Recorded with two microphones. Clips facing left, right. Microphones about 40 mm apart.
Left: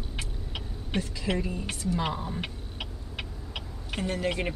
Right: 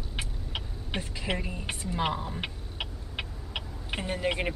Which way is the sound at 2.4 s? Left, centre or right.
Centre.